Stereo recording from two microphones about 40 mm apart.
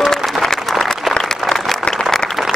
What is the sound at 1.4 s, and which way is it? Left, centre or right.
Applause, centre.